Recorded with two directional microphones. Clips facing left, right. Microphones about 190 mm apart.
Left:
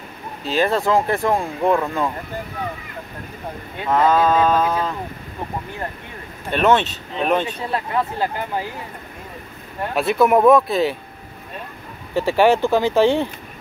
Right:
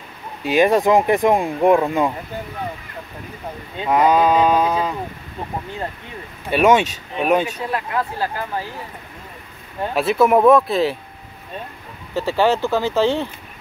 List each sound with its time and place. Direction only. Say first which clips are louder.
0.4 s speech: right 4 dB; 15° right (ahead or behind)
3.7 s speech: right 1 dB; 15° right (ahead or behind)
6.5 s speech: right 2 dB; 10° right (ahead or behind)
7.7 s speech: left 3 dB; 25° left (ahead or behind)
9.9 s speech: right 1 dB; centre (ahead or behind)
12.1 s speech: left 2 dB; 15° left (ahead or behind)